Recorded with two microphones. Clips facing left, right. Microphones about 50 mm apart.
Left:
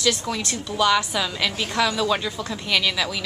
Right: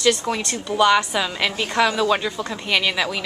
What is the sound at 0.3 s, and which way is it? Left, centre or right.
A woman's voice, right.